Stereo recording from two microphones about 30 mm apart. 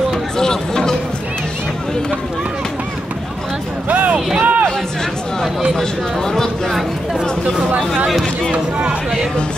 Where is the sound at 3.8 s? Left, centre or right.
Right.